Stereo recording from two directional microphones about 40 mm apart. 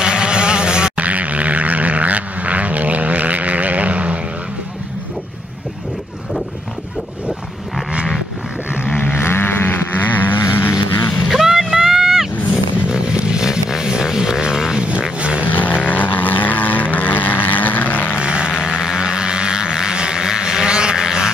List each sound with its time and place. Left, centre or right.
0.0 s a sound: right
0.9 s a sound: right
8.8 s vehicle: left
9.1 s vehicle: left
11.2 s vehicle: centre
12.8 s vehicle: right
14.8 s vehicle: right
15.4 s vehicle: left
18.2 s a sound: right
18.6 s vehicle: centre